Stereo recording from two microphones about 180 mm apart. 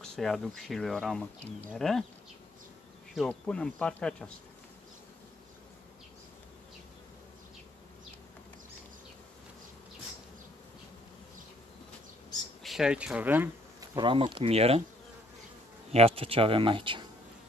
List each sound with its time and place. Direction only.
0.0 s speech: centre (ahead or behind)
3.2 s speech: 5° left (ahead or behind)
12.6 s speech: 5° right (ahead or behind)
13.9 s speech: 25° right (ahead or behind)
15.9 s speech: 35° right (ahead or behind)